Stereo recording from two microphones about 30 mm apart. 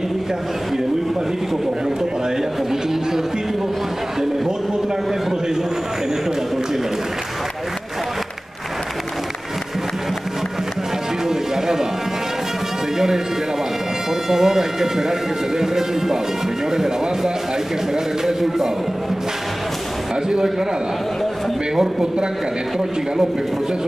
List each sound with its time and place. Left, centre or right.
11.2 s music: centre
14.3 s speech: centre